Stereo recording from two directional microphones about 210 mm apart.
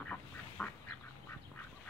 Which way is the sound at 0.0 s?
5° left (ahead or behind).